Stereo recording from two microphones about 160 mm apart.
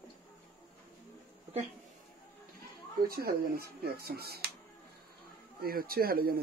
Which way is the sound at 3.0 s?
70° right (ahead or behind).